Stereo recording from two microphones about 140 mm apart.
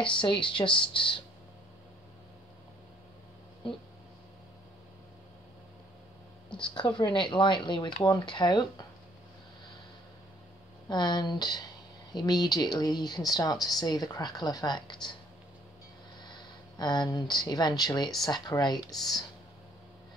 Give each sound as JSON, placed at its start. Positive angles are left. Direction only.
{"t": 0.0, "sound": "speech", "side_deg": 35}
{"t": 6.6, "sound": "speech", "side_deg": 35}
{"t": 10.9, "sound": "speech", "side_deg": 30}
{"t": 16.2, "sound": "speech", "side_deg": 30}